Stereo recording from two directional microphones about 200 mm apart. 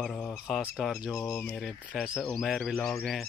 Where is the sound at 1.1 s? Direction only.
15° left (ahead or behind).